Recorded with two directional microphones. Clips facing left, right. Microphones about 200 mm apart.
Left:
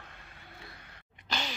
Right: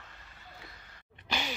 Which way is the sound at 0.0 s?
60° left (ahead or behind).